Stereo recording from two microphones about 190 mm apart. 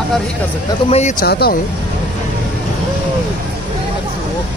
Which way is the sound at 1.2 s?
55° left (ahead or behind).